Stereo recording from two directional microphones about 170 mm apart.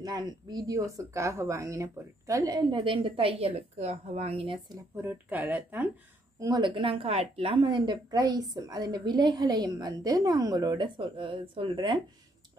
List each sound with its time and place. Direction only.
0.0 s a woman's voice: 25° right (ahead or behind)
4.9 s speech: 10° right (ahead or behind)
6.4 s a woman's voice: 25° right (ahead or behind)